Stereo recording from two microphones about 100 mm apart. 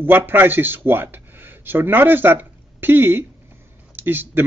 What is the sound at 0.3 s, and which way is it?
Speech, 20° right (ahead or behind).